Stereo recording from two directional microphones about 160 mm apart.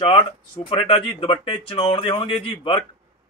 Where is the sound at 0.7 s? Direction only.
35° left (ahead or behind).